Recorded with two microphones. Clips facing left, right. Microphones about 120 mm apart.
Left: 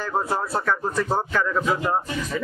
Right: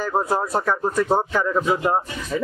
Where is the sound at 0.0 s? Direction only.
15° right (ahead or behind).